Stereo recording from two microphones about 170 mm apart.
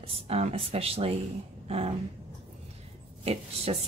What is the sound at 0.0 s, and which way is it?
Speech, 35° right (ahead or behind).